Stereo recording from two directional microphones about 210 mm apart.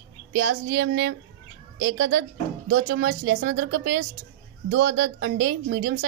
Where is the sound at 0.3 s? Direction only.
45° right (ahead or behind).